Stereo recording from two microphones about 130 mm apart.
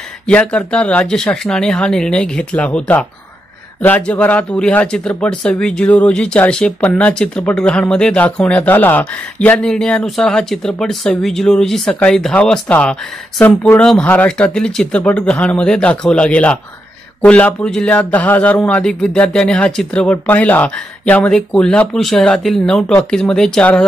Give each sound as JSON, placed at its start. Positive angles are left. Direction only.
{"t": 0.3, "sound": "speech", "side_deg": 10}